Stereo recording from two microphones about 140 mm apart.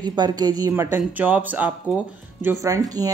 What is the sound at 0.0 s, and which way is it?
Speech, 30° right (ahead or behind).